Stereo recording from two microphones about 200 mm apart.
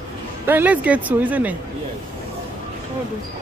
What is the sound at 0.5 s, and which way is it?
Speech, 10° right (ahead or behind).